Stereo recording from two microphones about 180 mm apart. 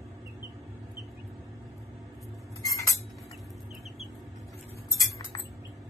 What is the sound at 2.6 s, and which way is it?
Chink, 15° left (ahead or behind).